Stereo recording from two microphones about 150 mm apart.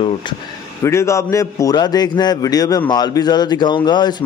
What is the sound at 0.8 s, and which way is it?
Speech, 20° left (ahead or behind).